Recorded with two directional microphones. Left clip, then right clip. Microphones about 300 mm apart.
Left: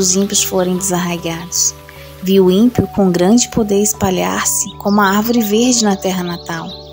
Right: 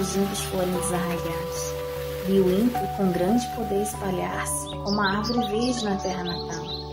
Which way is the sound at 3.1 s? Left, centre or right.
Left.